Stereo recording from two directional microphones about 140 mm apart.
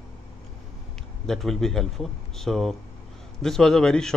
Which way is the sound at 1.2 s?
5° left (ahead or behind).